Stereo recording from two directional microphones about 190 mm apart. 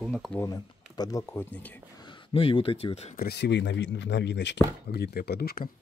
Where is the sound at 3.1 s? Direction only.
60° left (ahead or behind).